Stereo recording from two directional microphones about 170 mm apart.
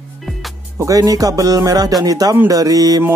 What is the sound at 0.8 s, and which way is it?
Music, 20° right (ahead or behind).